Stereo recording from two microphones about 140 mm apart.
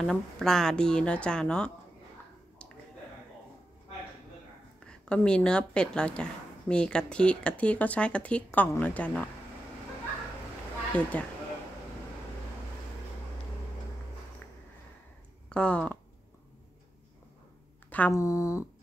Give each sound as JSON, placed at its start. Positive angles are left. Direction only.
{"t": 0.0, "sound": "a woman's voice", "side_deg": 5}
{"t": 4.8, "sound": "a woman's voice", "side_deg": 5}
{"t": 10.9, "sound": "speech", "side_deg": 10}
{"t": 15.5, "sound": "speech", "side_deg": 10}
{"t": 17.8, "sound": "speech", "side_deg": 10}